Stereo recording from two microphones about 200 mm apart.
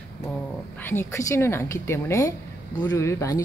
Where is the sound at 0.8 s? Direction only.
10° left (ahead or behind).